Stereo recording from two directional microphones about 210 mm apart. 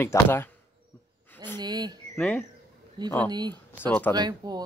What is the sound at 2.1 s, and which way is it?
Speech, 5° left (ahead or behind).